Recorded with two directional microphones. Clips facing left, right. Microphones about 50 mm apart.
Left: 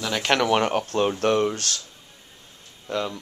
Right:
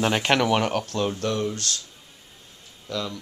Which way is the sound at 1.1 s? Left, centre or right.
Left.